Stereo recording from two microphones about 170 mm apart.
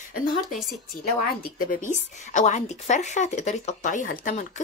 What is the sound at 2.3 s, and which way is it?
Speech, 45° left (ahead or behind).